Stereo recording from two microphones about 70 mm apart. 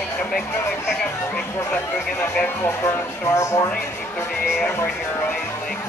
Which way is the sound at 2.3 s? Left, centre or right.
Left.